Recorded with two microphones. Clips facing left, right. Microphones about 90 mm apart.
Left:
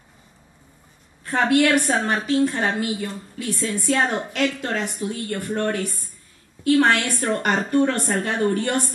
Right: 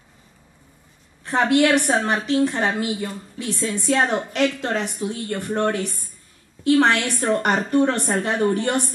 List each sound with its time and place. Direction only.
1.2 s a woman's voice: 25° right (ahead or behind)